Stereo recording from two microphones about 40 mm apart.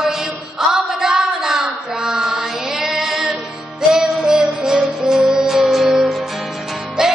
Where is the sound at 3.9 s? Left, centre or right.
Centre.